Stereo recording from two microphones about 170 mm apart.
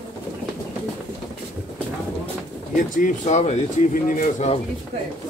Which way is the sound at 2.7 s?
50° left (ahead or behind).